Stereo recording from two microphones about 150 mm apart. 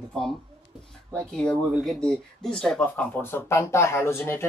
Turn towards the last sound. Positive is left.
turn(degrees=15)  # may be behind; listen again after turning